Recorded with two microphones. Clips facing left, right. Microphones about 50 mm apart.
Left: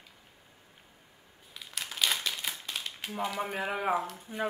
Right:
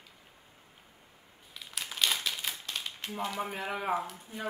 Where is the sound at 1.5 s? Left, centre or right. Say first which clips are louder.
Even; centre.